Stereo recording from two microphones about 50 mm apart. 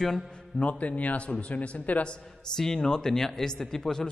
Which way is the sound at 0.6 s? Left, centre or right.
Left.